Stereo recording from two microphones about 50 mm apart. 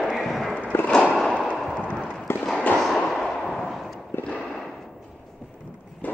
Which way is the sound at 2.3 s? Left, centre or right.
Left.